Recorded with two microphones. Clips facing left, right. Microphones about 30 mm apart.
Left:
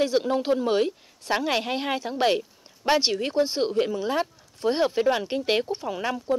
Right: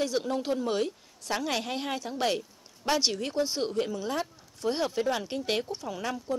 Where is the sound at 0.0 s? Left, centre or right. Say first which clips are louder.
Left 6 dB; left.